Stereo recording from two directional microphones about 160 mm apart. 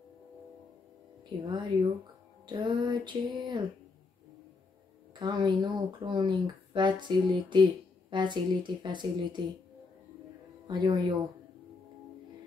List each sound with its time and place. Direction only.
1.4 s speech: 25° right (ahead or behind)
5.1 s speech: 25° right (ahead or behind)
10.7 s speech: 30° right (ahead or behind)